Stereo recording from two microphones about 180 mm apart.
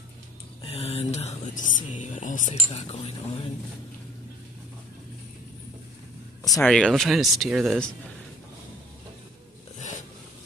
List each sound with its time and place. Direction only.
0.6 s a sound: 35° left (ahead or behind)
1.6 s speech: 45° left (ahead or behind)
6.4 s speech: centre (ahead or behind)